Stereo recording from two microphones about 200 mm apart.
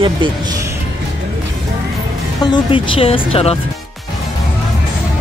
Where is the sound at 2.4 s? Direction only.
25° left (ahead or behind).